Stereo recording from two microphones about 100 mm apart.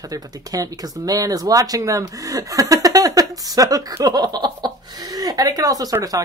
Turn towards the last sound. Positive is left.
turn(degrees=-35)  # may be behind; listen again after turning